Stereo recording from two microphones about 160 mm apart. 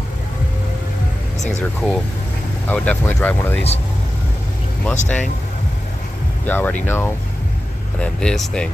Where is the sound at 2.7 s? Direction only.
10° left (ahead or behind).